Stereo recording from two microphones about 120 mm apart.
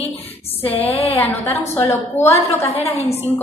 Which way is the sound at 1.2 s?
20° left (ahead or behind).